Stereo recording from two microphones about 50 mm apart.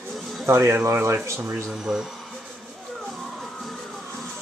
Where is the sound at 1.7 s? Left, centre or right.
Centre.